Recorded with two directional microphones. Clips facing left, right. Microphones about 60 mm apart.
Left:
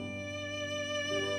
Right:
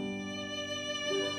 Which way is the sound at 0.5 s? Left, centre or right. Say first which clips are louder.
Left 5 dB; left.